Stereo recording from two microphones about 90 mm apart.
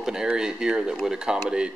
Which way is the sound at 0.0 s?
5° right (ahead or behind).